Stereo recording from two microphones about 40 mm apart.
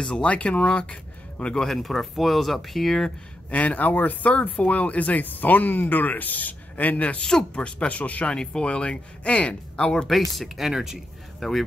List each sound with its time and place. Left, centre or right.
0.2 s speech: left
1.5 s speech: centre
3.4 s speech: left
7.5 s speech: left
8.0 s speech: left
8.3 s speech: left
10.0 s speech: centre
10.7 s speech: centre
11.3 s speech: centre